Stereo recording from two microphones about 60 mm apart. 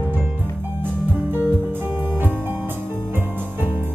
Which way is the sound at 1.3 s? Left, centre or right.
Right.